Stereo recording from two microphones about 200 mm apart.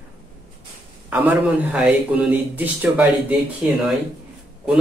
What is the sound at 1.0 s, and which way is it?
A man's voice, 10° right (ahead or behind).